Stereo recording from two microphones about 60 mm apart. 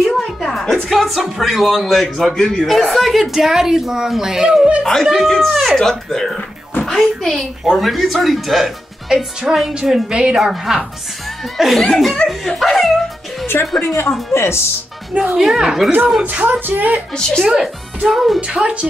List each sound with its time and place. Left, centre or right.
0.0 s music: centre
0.8 s a woman's voice: centre
5.0 s a woman's voice: centre
10.3 s a woman's voice: centre
12.3 s a sound: centre
13.7 s speech: left
15.3 s speech: centre
16.3 s speech: right
17.1 s speech: centre
17.5 s a woman's voice: centre
18.5 s speech: centre